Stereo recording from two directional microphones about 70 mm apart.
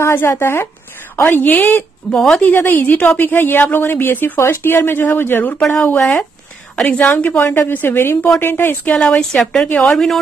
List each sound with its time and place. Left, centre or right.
0.0 s a woman's voice: left
2.0 s a woman's voice: centre
2.4 s speech: left
6.8 s a woman's voice: left
9.0 s a woman's voice: centre
9.7 s a woman's voice: left